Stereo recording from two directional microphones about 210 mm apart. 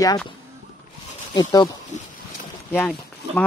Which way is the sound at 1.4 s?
20° left (ahead or behind).